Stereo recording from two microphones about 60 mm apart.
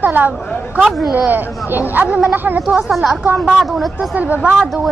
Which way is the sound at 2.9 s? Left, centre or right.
Centre.